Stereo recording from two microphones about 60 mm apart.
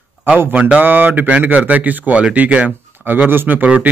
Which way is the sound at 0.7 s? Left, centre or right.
Right.